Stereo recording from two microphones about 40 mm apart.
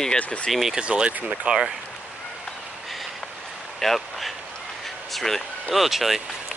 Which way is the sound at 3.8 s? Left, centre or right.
Centre.